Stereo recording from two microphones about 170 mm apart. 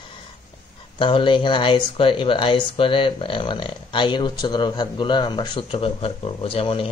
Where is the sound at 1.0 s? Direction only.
30° left (ahead or behind).